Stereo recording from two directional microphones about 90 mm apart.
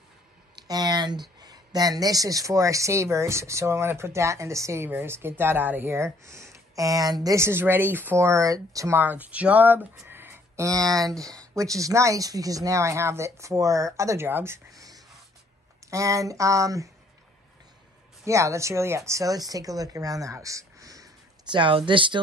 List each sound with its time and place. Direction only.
0.6 s speech: 45° right (ahead or behind)
7.2 s speech: 30° right (ahead or behind)
8.3 s speech: 35° right (ahead or behind)
8.9 s speech: 20° right (ahead or behind)
10.0 s a sound: 25° right (ahead or behind)
11.0 s speech: 40° right (ahead or behind)
14.7 s a sound: 40° right (ahead or behind)
15.9 s speech: 35° right (ahead or behind)
18.2 s speech: 35° right (ahead or behind)
21.5 s speech: 70° right (ahead or behind)